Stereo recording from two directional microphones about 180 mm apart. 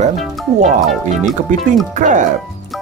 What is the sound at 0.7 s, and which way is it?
Speech, centre (ahead or behind).